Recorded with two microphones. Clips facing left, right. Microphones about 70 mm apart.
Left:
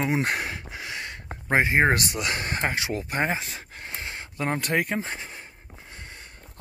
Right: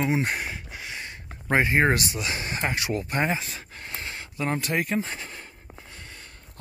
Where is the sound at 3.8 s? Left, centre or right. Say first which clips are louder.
Even; left.